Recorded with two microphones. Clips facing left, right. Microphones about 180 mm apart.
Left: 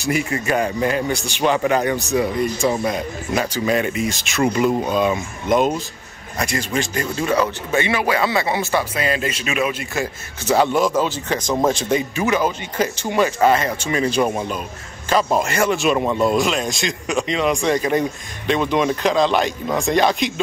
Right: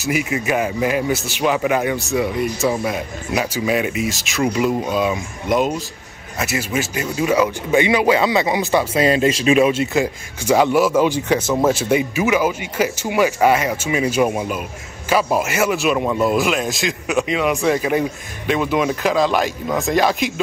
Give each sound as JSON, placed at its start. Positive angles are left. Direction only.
{"t": 0.0, "sound": "speech", "side_deg": -5}
{"t": 9.0, "sound": "speech", "side_deg": -30}
{"t": 10.4, "sound": "speech", "side_deg": -10}